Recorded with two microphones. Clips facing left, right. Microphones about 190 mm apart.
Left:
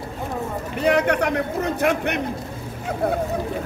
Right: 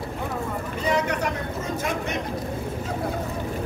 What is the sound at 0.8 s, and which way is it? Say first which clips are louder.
Speech: left 6 dB; 65° left (ahead or behind).